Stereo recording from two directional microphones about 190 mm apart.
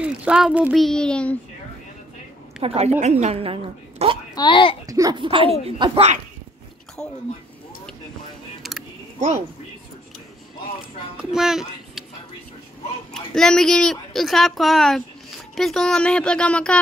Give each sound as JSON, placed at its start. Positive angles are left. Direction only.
{"t": 0.0, "sound": "speech", "side_deg": -5}
{"t": 2.6, "sound": "a woman's voice", "side_deg": -35}
{"t": 4.4, "sound": "a child's voice", "side_deg": 25}
{"t": 4.8, "sound": "speech", "side_deg": -20}
{"t": 7.0, "sound": "speech", "side_deg": 5}
{"t": 11.1, "sound": "a child's voice", "side_deg": 0}
{"t": 13.1, "sound": "speech", "side_deg": 5}